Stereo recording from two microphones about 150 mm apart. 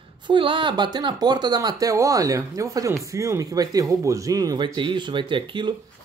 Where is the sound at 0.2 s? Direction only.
35° right (ahead or behind).